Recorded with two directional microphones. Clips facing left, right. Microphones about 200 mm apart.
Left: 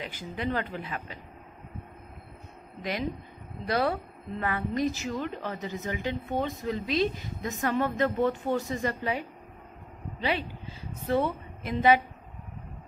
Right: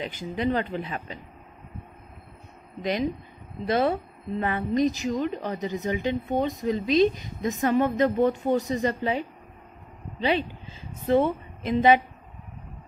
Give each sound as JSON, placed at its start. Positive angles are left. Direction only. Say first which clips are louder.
{"t": 0.0, "sound": "a woman's voice", "louder": "right 6 dB", "side_deg": -20}
{"t": 2.8, "sound": "a woman's voice", "louder": "right 5 dB", "side_deg": -20}
{"t": 11.1, "sound": "a woman's voice", "louder": "right 5 dB", "side_deg": -20}